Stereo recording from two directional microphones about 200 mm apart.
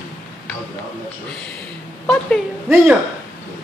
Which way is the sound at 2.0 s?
5° left (ahead or behind).